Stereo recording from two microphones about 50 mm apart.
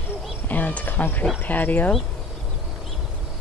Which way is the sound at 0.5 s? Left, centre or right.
Left.